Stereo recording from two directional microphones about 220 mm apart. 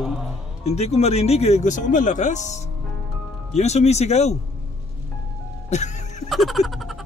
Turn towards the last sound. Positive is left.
turn(degrees=0)  # may be behind; listen again after turning